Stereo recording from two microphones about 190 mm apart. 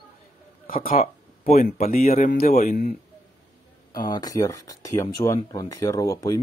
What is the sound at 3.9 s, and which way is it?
Speech, 20° left (ahead or behind).